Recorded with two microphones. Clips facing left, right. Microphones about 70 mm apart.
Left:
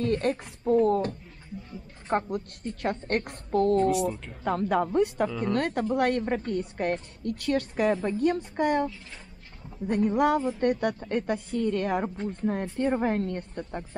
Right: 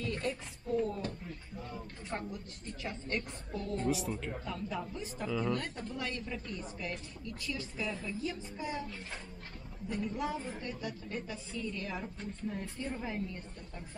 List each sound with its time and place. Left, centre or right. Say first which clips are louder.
0.0 s speech: left 10 dB; left
3.9 s speech: left 8 dB; centre
4.5 s speech: left 17 dB; left